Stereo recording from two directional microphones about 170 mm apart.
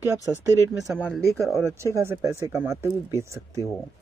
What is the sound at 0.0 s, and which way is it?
Speech, 15° right (ahead or behind).